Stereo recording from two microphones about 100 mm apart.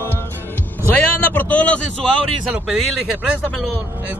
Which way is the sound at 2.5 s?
5° right (ahead or behind).